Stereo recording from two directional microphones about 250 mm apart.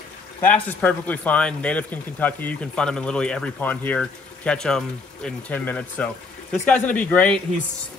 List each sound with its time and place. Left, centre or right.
0.7 s speech: centre